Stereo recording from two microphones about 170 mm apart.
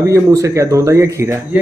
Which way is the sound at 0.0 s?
20° right (ahead or behind).